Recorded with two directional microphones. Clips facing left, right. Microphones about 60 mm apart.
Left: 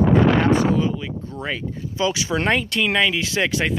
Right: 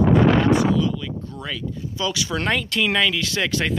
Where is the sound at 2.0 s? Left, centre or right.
Left.